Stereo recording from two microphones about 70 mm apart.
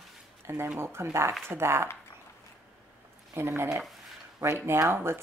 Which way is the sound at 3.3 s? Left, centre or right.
Right.